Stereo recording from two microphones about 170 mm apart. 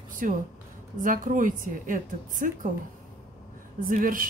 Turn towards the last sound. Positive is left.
turn(degrees=-55)  # may be behind; listen again after turning